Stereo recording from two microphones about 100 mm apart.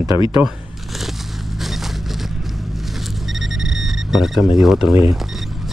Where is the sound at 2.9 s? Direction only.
5° right (ahead or behind).